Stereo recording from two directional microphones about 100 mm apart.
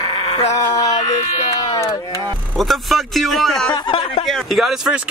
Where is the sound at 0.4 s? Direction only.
90° left.